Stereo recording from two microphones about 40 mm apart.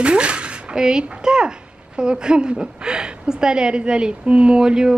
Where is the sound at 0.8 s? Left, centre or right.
Centre.